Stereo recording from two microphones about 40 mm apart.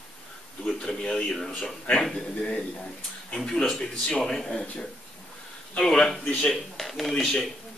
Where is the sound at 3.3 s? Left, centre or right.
Centre.